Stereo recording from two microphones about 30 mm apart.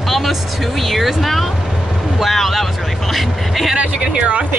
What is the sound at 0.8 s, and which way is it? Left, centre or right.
Speech, centre.